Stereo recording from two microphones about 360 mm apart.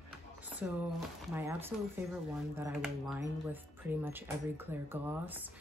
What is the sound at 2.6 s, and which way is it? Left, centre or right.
Speech, centre.